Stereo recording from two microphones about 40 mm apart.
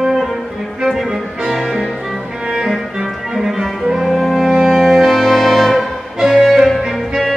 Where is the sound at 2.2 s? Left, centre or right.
Centre.